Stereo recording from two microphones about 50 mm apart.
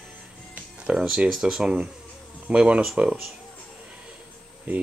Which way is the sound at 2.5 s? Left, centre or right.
Right.